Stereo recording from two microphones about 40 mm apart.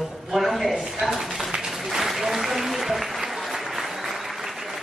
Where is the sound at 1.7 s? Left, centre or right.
Centre.